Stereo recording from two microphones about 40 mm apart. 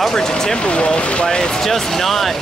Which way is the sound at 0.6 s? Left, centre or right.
Left.